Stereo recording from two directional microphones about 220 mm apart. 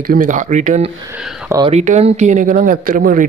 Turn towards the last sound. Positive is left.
turn(degrees=-40)  # may be behind; listen again after turning